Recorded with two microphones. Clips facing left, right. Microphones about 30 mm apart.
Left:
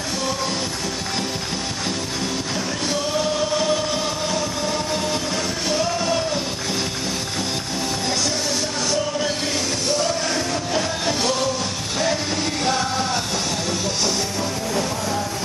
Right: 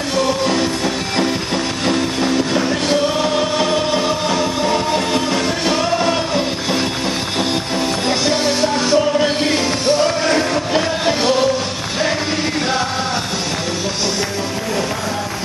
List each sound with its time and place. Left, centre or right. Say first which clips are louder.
1.9 s music: right 10 dB; right
8.1 s music: right 7 dB; right